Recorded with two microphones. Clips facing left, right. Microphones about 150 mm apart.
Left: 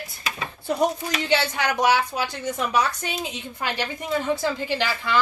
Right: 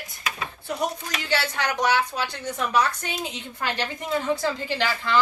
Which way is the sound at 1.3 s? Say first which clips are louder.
Left 3 dB; 15° left (ahead or behind).